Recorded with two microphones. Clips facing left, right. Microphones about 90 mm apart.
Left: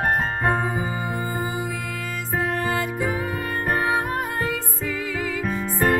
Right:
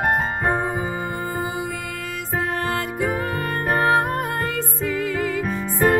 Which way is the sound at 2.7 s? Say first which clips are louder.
Right 1 dB; centre (ahead or behind).